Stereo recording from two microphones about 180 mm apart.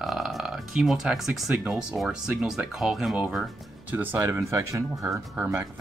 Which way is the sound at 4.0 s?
15° right (ahead or behind).